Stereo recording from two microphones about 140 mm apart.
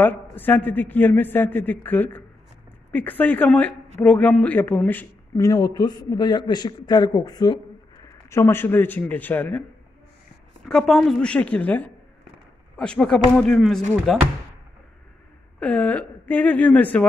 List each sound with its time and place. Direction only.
0.0 s a man's voice: 15° left (ahead or behind); by 7.6 s 30° left (ahead or behind)
8.3 s a man's voice: 20° left (ahead or behind)
10.7 s a man's voice: 5° left (ahead or behind)
15.6 s a man's voice: 10° left (ahead or behind)